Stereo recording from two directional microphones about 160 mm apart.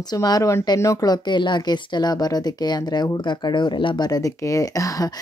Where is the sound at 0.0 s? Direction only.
25° left (ahead or behind).